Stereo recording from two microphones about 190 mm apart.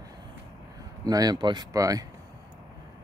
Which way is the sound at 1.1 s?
20° right (ahead or behind).